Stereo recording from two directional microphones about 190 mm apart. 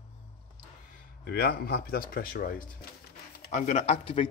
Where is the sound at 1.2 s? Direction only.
55° left (ahead or behind).